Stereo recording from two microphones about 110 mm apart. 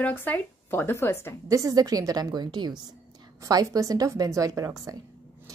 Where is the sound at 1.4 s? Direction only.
30° right (ahead or behind).